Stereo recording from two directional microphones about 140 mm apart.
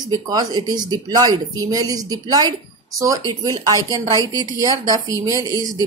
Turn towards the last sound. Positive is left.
turn(degrees=-25)  # may be behind; listen again after turning